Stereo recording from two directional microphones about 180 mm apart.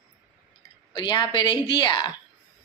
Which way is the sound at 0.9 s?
25° left (ahead or behind).